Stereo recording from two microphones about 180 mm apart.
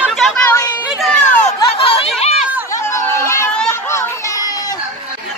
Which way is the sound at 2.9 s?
15° left (ahead or behind).